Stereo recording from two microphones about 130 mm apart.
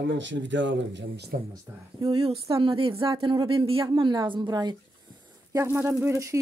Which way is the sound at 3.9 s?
35° right (ahead or behind).